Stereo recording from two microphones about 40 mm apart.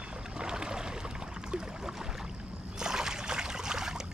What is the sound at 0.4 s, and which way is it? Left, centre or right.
Boat, centre.